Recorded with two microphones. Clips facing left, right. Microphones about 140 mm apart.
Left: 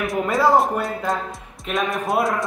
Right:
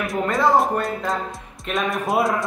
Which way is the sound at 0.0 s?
Centre (ahead or behind).